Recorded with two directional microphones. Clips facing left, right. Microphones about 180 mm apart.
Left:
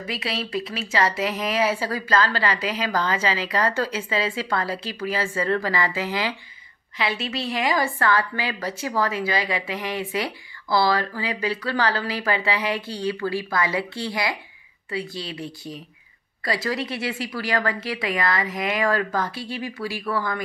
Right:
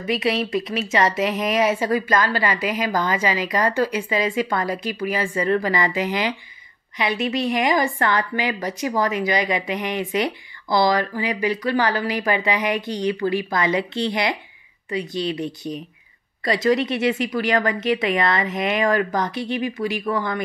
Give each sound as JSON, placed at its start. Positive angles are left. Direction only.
{"t": 0.0, "sound": "a woman's voice", "side_deg": -20}